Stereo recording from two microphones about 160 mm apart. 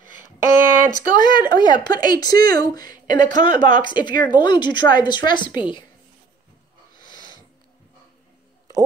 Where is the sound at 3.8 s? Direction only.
30° left (ahead or behind).